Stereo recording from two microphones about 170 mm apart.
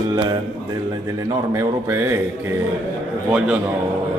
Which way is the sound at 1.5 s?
15° right (ahead or behind).